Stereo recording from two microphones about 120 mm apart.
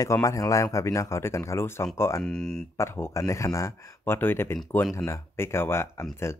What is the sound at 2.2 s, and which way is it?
Speech, 5° left (ahead or behind).